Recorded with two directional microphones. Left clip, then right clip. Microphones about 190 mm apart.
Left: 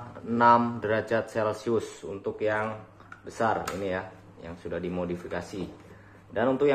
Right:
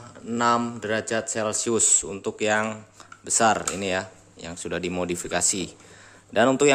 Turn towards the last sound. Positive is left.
turn(degrees=-70)  # may be behind; listen again after turning